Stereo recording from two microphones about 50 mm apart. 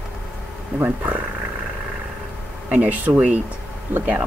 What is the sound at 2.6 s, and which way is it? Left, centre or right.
Speech, right.